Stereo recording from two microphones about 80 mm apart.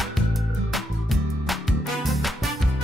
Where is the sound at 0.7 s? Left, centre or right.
Centre.